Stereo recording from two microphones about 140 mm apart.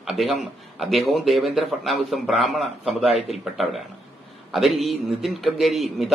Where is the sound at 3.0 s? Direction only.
45° left (ahead or behind).